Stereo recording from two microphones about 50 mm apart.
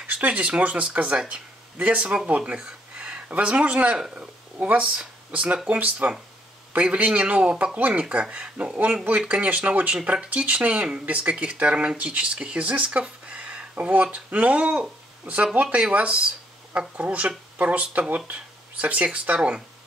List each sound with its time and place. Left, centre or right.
0.0 s speech: right